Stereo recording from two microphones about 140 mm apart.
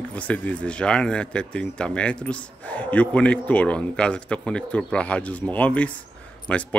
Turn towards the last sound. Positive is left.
turn(degrees=10)  # may be behind; listen again after turning